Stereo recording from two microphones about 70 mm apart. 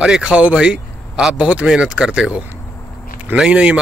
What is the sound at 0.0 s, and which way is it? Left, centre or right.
A man's voice, centre.